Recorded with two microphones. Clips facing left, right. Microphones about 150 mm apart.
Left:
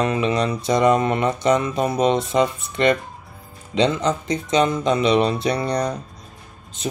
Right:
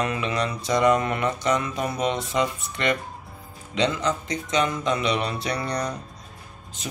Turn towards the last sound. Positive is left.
turn(degrees=25)  # may be behind; listen again after turning